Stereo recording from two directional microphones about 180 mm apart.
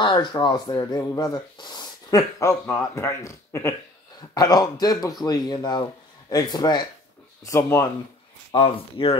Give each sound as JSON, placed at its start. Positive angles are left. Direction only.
{"t": 0.0, "sound": "speech", "side_deg": 25}
{"t": 8.5, "sound": "speech", "side_deg": 25}